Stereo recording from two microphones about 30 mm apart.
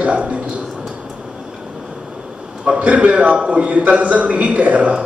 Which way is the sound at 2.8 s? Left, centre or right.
Right.